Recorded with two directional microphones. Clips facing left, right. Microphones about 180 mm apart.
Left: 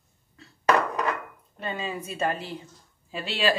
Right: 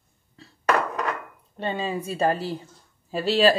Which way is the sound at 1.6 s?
30° right (ahead or behind).